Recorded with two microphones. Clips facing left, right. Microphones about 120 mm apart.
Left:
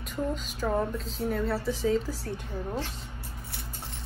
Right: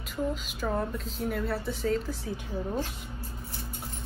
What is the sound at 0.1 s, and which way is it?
A woman's voice, 5° right (ahead or behind).